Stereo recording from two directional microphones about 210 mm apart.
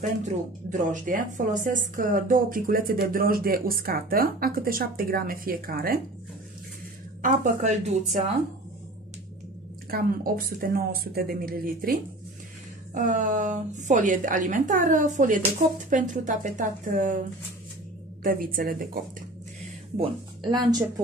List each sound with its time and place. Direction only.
0.2 s a woman's voice: 35° right (ahead or behind)
7.2 s a woman's voice: 40° right (ahead or behind)
9.8 s a woman's voice: 45° right (ahead or behind)
12.9 s a woman's voice: 40° right (ahead or behind)
18.2 s a woman's voice: 40° right (ahead or behind)
20.0 s a woman's voice: 20° right (ahead or behind)